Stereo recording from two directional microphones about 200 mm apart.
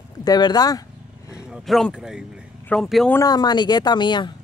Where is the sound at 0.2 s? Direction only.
20° left (ahead or behind).